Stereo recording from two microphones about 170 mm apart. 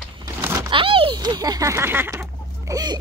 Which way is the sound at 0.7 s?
30° right (ahead or behind).